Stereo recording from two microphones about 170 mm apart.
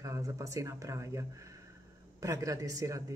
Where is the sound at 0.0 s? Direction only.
20° right (ahead or behind).